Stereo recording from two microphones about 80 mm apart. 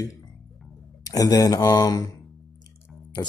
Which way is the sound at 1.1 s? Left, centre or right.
Left.